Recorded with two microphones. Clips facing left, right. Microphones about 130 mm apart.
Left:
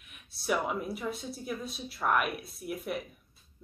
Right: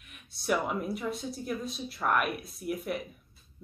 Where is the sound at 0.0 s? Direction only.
Centre (ahead or behind).